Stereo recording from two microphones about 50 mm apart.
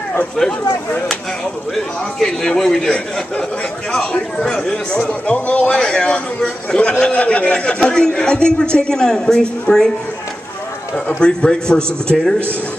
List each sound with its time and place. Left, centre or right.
2.1 s a man's voice: centre
11.1 s a man's voice: centre